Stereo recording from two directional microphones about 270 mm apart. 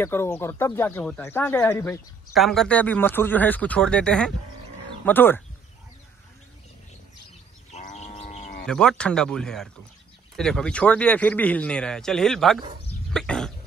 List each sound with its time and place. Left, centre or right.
0.0 s speech: centre
7.7 s livestock: left
8.6 s a man's voice: centre
13.1 s a sound: centre